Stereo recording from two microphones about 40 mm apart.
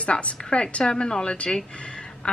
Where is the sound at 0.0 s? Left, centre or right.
Left.